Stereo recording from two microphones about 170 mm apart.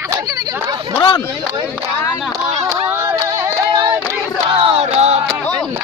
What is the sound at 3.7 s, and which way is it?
Child singing, 25° right (ahead or behind).